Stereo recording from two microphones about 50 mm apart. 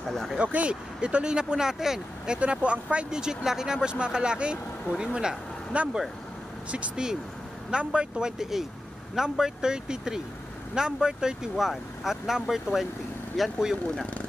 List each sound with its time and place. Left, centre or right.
0.4 s speech: right
7.7 s speech: centre